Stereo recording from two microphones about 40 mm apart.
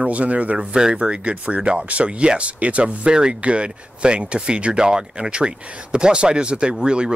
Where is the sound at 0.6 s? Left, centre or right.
Centre.